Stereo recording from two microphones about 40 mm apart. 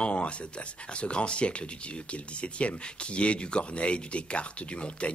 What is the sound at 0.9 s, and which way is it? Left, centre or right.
Speech, left.